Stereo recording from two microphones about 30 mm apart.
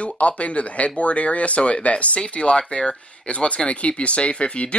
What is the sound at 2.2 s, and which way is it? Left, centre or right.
Speech, left.